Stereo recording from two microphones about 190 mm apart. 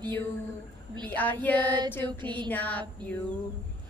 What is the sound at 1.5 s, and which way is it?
Female singing, 25° right (ahead or behind).